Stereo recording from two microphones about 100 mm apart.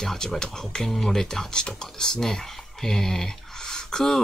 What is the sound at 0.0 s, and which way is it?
Speech, 5° left (ahead or behind).